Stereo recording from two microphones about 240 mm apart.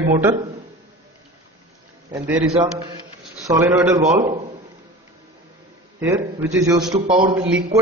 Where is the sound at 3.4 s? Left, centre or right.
Centre.